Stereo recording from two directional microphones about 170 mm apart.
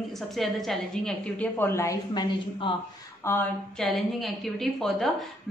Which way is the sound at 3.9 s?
Centre (ahead or behind).